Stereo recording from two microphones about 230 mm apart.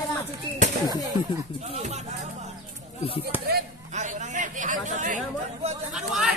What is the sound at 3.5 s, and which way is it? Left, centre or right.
Speech, right.